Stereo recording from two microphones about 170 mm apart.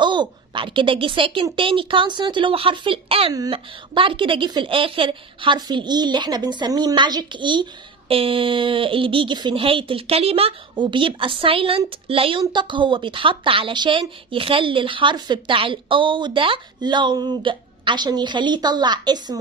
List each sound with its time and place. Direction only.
0.0 s speech: 25° right (ahead or behind)